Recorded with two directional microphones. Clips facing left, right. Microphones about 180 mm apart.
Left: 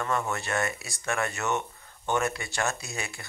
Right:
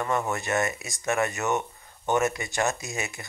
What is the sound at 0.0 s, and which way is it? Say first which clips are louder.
Speech: right 2 dB; 15° right (ahead or behind).